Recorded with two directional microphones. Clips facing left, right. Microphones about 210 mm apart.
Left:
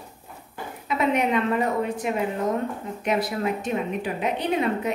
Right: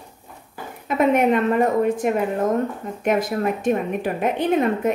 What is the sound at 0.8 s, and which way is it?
A woman's voice, 50° right (ahead or behind).